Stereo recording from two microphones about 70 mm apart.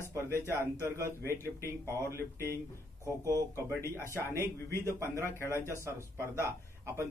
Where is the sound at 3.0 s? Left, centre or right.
Right.